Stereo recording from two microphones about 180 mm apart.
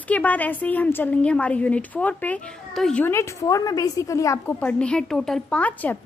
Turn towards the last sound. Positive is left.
turn(degrees=10)  # may be behind; listen again after turning